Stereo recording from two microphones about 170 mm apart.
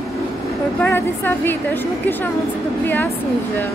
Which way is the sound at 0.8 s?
10° left (ahead or behind).